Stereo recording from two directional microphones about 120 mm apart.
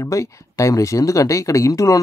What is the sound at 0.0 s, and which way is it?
Speech, 25° left (ahead or behind).